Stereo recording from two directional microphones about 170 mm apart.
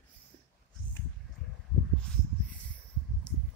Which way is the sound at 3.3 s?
5° left (ahead or behind).